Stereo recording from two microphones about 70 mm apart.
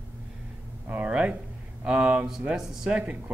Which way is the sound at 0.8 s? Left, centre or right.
Right.